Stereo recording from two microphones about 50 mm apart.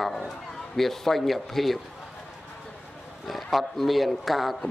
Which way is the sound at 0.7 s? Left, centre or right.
Centre.